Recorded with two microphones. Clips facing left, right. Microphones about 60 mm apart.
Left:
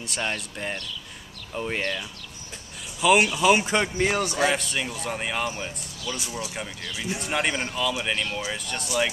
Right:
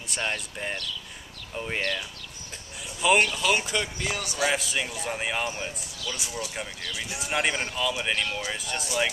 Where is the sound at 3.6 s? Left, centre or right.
Left.